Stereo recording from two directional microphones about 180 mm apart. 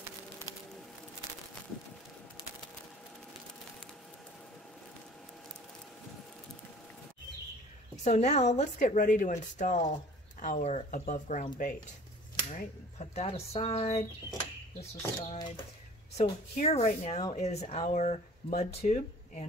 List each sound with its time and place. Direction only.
7.9 s speech: 40° left (ahead or behind)
12.5 s speech: 35° left (ahead or behind)
15.2 s speech: 30° left (ahead or behind)